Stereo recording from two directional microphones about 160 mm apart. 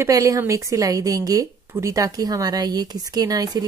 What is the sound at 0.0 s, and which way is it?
A woman's voice, 20° right (ahead or behind).